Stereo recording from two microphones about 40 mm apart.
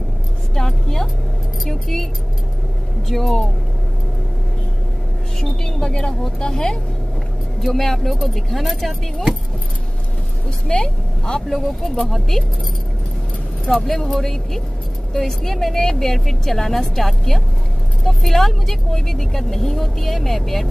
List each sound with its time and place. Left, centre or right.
0.6 s music: centre
1.6 s keys jangling: centre
3.1 s a woman's voice: centre
5.4 s vehicle: centre
6.4 s speech: centre
7.6 s speech: centre
10.7 s speech: centre
11.4 s a woman's voice: centre
13.8 s a woman's voice: centre